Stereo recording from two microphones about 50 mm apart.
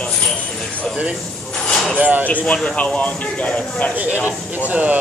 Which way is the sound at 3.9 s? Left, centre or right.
Right.